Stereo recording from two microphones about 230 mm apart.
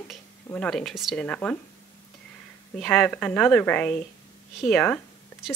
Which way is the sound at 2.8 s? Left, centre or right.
Centre.